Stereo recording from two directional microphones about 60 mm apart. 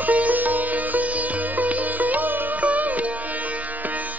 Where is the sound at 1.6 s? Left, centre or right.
Right.